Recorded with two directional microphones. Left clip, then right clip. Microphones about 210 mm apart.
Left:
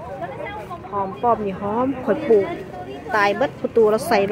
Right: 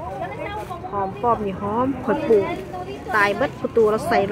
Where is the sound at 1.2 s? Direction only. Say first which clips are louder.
Left 2 dB; 10° left (ahead or behind).